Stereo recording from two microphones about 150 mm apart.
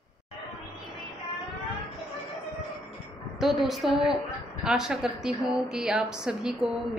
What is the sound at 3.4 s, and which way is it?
A woman's voice, centre (ahead or behind).